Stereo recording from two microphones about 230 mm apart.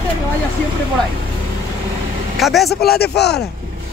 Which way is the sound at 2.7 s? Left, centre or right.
Left.